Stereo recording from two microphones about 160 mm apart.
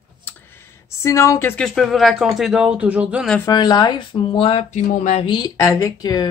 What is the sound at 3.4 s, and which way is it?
Speech, 25° left (ahead or behind).